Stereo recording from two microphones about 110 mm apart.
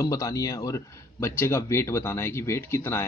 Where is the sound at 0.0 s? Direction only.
30° left (ahead or behind).